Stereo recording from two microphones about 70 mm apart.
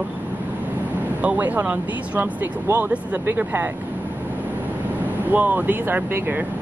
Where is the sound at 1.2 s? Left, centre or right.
Right.